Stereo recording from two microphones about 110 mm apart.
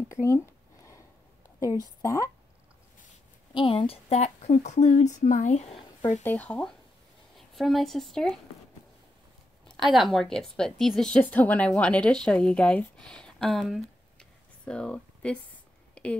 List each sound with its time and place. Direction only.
0.1 s speech: 25° left (ahead or behind)
1.6 s a woman's voice: 30° left (ahead or behind)
3.5 s speech: 55° left (ahead or behind); by 5.8 s 90° left
6.2 s speech: 15° left (ahead or behind)
7.3 s speech: centre (ahead or behind)
9.8 s speech: centre (ahead or behind)
15.9 s a sound: 10° left (ahead or behind)